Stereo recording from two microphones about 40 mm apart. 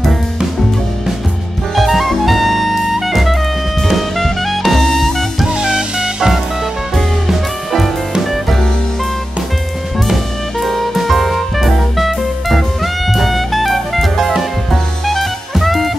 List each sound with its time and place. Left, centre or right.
1.8 s music: centre
3.8 s jazz: centre
5.5 s music: centre
7.0 s music: centre
10.6 s music: centre